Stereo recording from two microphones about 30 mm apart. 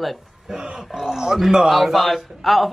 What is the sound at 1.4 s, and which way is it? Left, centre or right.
Speech, centre.